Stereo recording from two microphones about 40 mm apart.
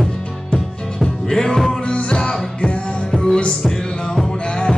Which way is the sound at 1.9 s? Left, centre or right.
Left.